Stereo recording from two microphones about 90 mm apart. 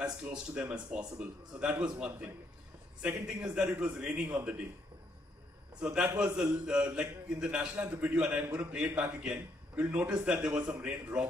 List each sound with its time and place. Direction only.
0.0 s a man's voice: 10° right (ahead or behind)
5.8 s a man's voice: 10° right (ahead or behind)